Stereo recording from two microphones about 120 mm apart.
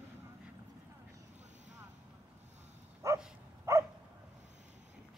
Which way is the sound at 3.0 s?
25° right (ahead or behind).